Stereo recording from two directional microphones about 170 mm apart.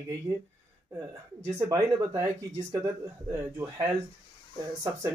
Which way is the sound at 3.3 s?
15° right (ahead or behind).